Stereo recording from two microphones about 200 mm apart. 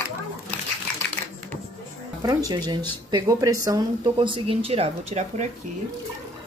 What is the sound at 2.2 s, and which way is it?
Speech, 15° right (ahead or behind).